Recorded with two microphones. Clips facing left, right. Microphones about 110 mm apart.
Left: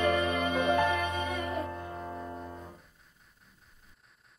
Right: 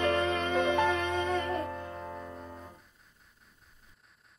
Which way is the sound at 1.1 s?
70° right (ahead or behind).